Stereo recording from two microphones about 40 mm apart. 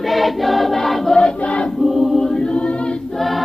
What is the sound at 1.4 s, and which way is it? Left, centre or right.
Choir, left.